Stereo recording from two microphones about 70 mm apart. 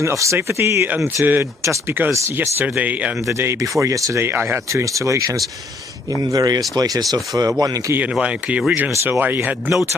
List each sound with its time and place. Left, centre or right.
0.0 s speech: right
1.2 s speech: right
3.3 s speech: right
3.8 s speech: right
4.2 s speech: right
4.9 s speech: right
6.3 s speech: right
8.0 s speech: centre
8.9 s speech: right
9.2 s speech: right